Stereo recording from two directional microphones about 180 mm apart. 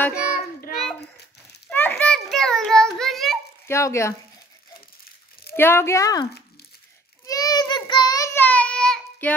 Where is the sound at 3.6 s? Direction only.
15° left (ahead or behind).